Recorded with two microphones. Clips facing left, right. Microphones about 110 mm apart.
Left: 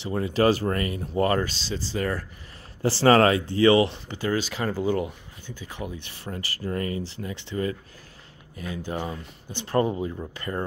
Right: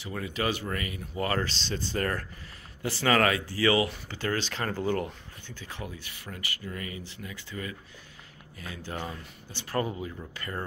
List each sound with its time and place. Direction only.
0.0 s speech: 30° left (ahead or behind)
1.6 s speech: 5° left (ahead or behind)
2.8 s speech: 30° left (ahead or behind)
4.2 s speech: 10° left (ahead or behind)
6.0 s speech: 30° left (ahead or behind)